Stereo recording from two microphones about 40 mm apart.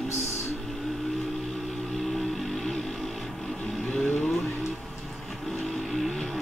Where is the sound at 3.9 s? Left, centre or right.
Left.